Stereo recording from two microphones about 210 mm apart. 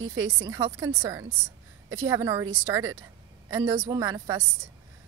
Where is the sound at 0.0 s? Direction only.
75° right (ahead or behind).